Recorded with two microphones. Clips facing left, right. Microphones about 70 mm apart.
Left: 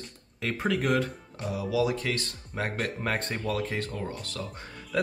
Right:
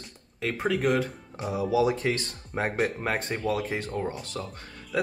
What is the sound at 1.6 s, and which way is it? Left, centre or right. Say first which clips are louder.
Speech: right 3 dB; right.